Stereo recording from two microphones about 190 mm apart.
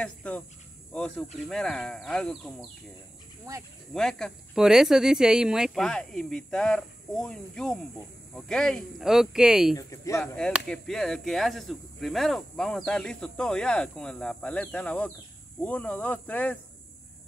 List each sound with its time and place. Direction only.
0.0 s cricket: 5° left (ahead or behind)
0.9 s speech: 5° left (ahead or behind)
3.5 s speech: 20° right (ahead or behind)
3.9 s speech: centre (ahead or behind)
9.8 s speech: 15° left (ahead or behind)